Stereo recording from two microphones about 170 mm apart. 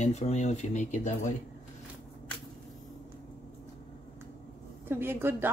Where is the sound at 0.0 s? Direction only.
40° left (ahead or behind).